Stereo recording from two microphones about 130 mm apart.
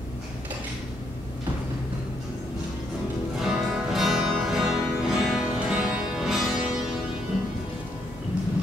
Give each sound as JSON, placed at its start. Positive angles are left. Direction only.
{"t": 3.3, "sound": "music", "side_deg": -5}